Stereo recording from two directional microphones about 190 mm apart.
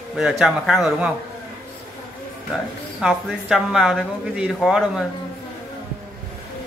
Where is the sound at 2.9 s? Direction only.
5° right (ahead or behind).